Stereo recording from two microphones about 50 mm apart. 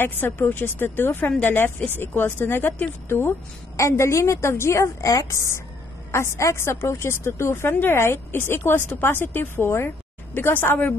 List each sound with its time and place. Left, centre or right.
0.0 s speech: left
3.7 s speech: left
9.7 s speech: left